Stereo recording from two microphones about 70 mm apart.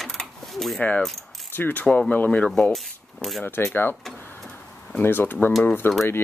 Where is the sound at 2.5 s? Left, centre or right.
Centre.